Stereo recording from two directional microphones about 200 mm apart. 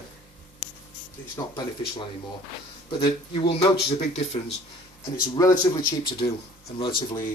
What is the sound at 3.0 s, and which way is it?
Speech, 25° left (ahead or behind).